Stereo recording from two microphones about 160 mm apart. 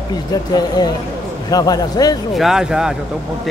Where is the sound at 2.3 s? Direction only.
5° right (ahead or behind).